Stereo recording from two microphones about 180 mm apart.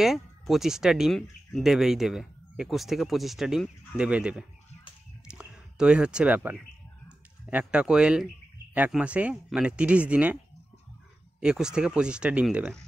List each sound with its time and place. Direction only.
0.0 s speech: centre (ahead or behind)